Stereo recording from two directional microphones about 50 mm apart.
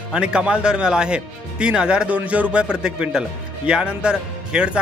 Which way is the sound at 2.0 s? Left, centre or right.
Right.